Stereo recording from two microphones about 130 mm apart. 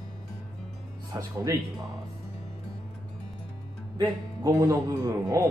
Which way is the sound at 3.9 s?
35° right (ahead or behind).